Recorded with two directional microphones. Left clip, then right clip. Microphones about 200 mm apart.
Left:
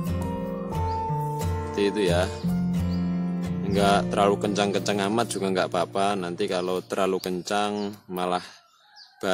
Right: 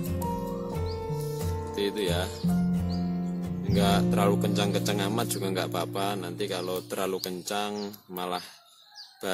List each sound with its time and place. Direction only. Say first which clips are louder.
0.7 s music: left 6 dB; centre (ahead or behind)
1.8 s speech: left 6 dB; 35° left (ahead or behind)
2.7 s music: left 2 dB; centre (ahead or behind)
3.6 s speech: left 5 dB; 35° left (ahead or behind)